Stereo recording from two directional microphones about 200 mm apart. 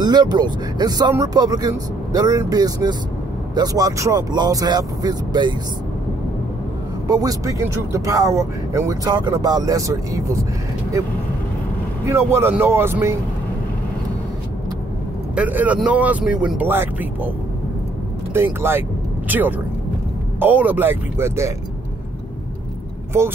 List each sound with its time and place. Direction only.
0.0 s speech: 20° right (ahead or behind)
7.1 s speech: 20° right (ahead or behind)
12.1 s speech: 15° right (ahead or behind)
15.3 s speech: 5° right (ahead or behind)
18.3 s speech: 10° right (ahead or behind)